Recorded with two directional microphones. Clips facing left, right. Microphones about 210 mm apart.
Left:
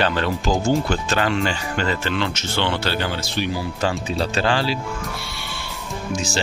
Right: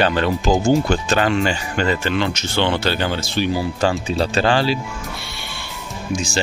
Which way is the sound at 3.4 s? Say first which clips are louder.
Right 4 dB; 35° right (ahead or behind).